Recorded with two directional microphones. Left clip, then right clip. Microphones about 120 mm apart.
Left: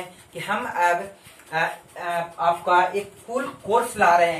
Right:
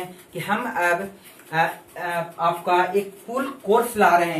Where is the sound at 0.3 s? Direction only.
Centre (ahead or behind).